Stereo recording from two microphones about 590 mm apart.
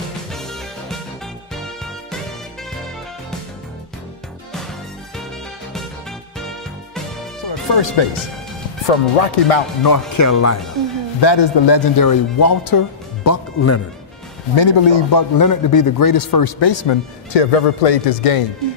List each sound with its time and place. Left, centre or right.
7.4 s speech: left
8.8 s speech: left
9.8 s speech: left
11.1 s speech: left
14.5 s speech: left
17.3 s speech: left